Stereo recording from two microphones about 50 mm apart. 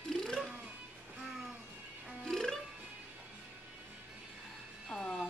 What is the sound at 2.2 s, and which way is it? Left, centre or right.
Music, centre.